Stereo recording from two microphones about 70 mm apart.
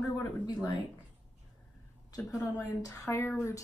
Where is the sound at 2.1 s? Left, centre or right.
Left.